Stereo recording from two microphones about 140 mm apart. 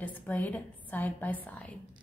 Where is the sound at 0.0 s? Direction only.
10° left (ahead or behind).